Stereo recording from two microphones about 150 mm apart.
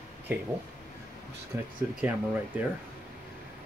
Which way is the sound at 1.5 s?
15° right (ahead or behind).